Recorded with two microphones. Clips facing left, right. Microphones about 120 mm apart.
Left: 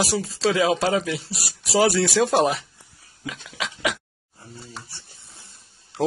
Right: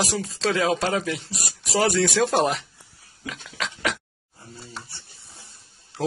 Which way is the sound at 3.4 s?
5° left (ahead or behind).